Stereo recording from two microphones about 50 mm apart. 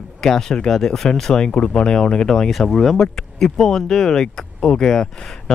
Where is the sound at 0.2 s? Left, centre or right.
Centre.